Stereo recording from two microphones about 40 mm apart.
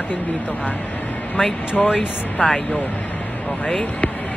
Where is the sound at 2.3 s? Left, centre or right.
Left.